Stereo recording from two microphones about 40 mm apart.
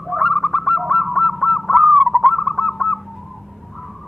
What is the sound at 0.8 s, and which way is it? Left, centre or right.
Honk, centre.